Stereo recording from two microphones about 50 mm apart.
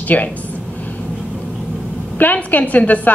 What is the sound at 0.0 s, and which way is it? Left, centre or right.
Speech, left.